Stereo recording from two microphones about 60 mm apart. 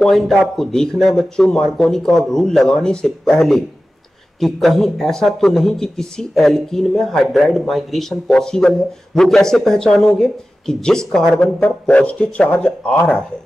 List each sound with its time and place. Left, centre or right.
0.0 s speech: centre
4.4 s speech: centre
11.8 s speech: centre